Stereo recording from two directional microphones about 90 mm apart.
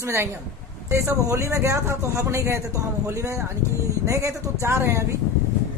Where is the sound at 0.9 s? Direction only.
35° right (ahead or behind).